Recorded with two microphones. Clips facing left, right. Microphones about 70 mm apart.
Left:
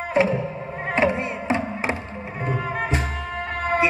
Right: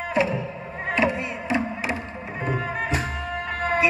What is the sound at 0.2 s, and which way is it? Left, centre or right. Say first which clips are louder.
Music: left 4 dB; left.